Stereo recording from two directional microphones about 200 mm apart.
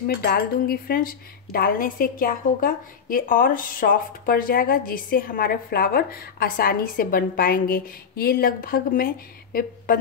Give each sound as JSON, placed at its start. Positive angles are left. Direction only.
{"t": 0.0, "sound": "speech", "side_deg": 50}